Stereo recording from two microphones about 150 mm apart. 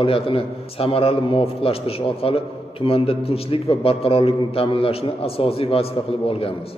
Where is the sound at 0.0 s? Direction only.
40° left (ahead or behind).